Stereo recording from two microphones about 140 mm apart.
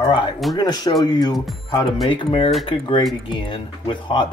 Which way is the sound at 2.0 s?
40° left (ahead or behind).